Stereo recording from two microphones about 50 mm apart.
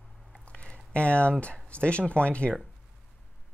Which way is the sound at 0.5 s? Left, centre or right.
Centre.